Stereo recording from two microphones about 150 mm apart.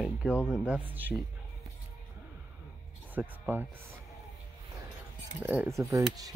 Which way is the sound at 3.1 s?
10° right (ahead or behind).